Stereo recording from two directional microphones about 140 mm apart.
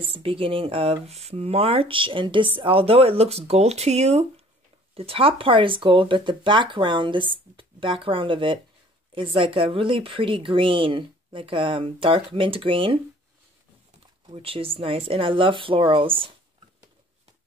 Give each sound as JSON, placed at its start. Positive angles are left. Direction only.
{"t": 0.1, "sound": "speech", "side_deg": -40}
{"t": 14.3, "sound": "speech", "side_deg": -40}